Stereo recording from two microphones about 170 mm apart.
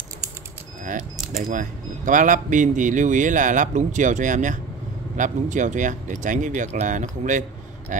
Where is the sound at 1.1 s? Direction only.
Centre (ahead or behind).